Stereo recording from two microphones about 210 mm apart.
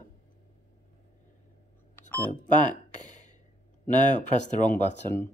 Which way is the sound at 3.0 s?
35° left (ahead or behind).